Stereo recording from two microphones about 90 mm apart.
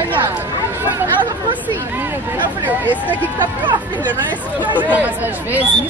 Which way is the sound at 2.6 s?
20° right (ahead or behind).